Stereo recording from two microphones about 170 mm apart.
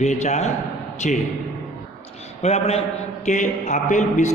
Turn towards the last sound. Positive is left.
turn(degrees=45)  # may be behind; listen again after turning